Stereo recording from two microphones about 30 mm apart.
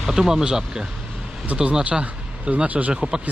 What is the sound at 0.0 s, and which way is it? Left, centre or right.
Speech, centre.